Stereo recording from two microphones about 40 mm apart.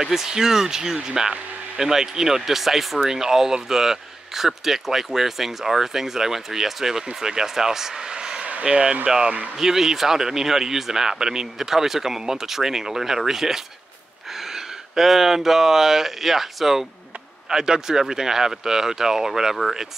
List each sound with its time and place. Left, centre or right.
0.0 s speech: centre